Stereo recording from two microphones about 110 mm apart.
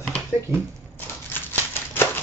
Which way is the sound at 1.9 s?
20° left (ahead or behind).